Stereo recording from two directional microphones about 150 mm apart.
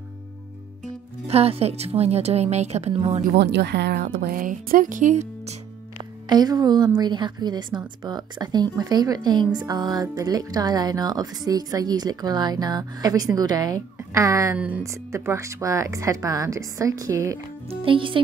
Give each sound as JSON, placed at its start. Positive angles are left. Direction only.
{"t": 1.2, "sound": "speech", "side_deg": -40}
{"t": 3.3, "sound": "speech", "side_deg": -90}
{"t": 6.2, "sound": "a woman's voice", "side_deg": -25}
{"t": 17.6, "sound": "speech", "side_deg": -35}